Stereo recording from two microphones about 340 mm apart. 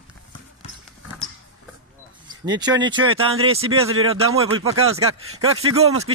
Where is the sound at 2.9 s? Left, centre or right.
Right.